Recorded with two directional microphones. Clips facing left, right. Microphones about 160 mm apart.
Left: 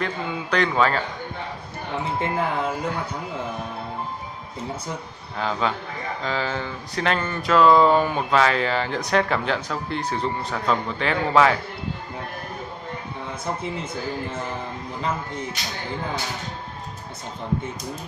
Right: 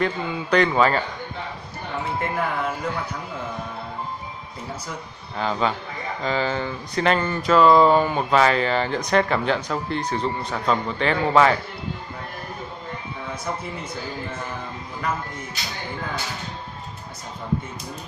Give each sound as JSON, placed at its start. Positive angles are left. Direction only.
{"t": 0.0, "sound": "speech", "side_deg": 0}
{"t": 2.1, "sound": "speech", "side_deg": 20}
{"t": 5.4, "sound": "speech", "side_deg": 0}